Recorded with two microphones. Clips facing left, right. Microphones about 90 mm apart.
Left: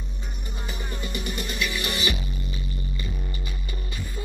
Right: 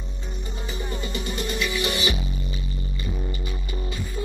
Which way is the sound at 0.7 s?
20° right (ahead or behind).